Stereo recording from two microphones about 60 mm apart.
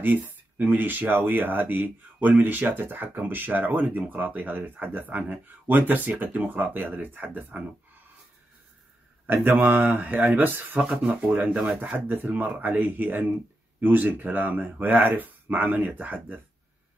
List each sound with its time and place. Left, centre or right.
0.0 s speech: right
9.2 s speech: right
10.8 s speech: centre